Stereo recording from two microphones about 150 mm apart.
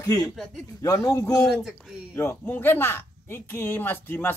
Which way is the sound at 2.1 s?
15° left (ahead or behind).